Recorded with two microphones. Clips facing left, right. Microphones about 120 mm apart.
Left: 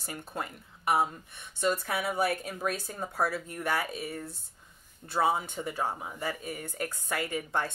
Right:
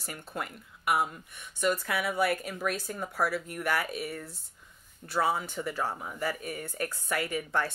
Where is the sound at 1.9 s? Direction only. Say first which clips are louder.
Right 1 dB; 20° left (ahead or behind).